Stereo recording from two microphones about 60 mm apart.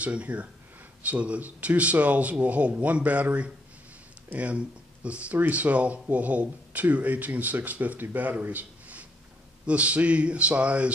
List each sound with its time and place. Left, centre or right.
0.0 s speech: right